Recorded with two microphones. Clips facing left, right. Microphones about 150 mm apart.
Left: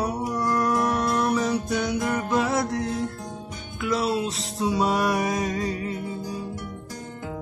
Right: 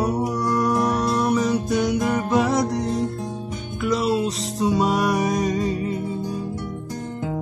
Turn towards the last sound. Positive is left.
turn(degrees=0)  # may be behind; listen again after turning